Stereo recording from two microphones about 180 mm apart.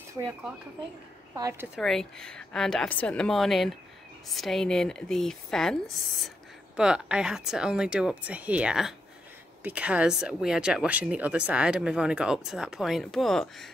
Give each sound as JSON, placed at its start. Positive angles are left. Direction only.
{"t": 1.3, "sound": "speech", "side_deg": -15}
{"t": 1.8, "sound": "speech", "side_deg": 5}